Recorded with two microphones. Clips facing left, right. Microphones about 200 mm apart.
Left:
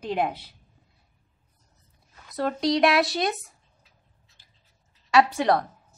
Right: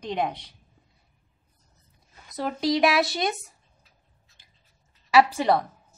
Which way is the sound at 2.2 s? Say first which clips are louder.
Left 1 dB; centre (ahead or behind).